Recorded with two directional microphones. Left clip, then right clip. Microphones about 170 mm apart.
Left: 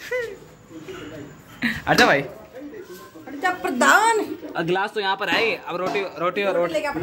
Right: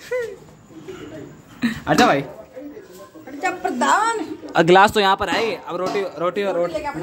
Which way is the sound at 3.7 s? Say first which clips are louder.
Left 3 dB; 45° left (ahead or behind).